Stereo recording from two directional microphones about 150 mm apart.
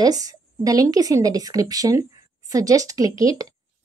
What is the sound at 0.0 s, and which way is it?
A woman's voice, 25° right (ahead or behind).